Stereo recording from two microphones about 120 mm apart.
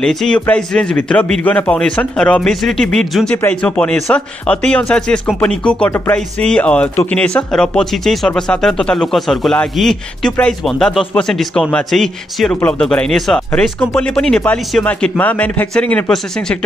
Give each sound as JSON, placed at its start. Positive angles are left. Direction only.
{"t": 0.0, "sound": "a man's voice", "side_deg": 5}
{"t": 3.3, "sound": "speech", "side_deg": 15}
{"t": 5.9, "sound": "music", "side_deg": 20}
{"t": 6.1, "sound": "a man's voice", "side_deg": 10}